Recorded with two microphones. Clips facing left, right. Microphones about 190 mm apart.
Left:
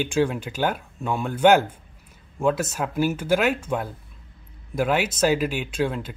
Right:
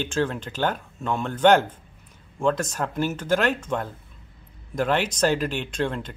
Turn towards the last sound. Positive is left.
turn(degrees=5)  # may be behind; listen again after turning